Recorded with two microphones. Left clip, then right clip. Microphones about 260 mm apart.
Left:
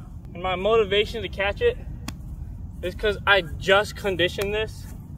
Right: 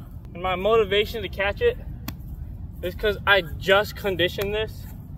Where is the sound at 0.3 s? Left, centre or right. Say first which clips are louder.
Right 1 dB; centre.